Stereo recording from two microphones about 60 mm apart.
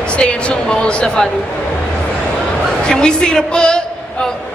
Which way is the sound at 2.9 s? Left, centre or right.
Centre.